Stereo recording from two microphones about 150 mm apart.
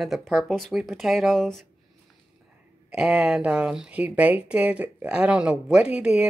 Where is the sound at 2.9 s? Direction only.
5° right (ahead or behind).